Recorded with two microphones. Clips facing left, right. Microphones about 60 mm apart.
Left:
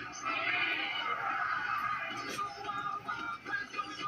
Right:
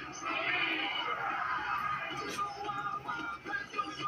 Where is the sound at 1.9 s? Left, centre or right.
Centre.